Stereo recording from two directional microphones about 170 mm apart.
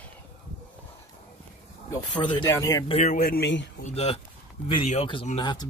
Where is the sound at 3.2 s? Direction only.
65° left (ahead or behind).